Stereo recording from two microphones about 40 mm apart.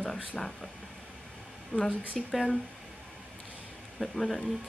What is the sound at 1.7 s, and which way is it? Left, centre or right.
Speech, left.